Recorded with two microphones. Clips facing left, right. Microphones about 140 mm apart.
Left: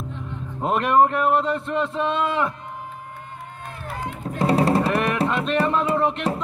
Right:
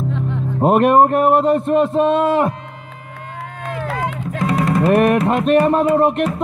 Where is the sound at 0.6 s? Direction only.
55° right (ahead or behind).